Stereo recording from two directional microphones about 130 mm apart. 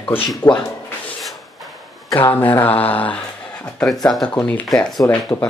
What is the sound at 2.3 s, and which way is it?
Speech, 15° left (ahead or behind).